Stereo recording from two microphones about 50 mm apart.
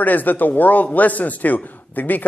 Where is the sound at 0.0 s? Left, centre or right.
Left.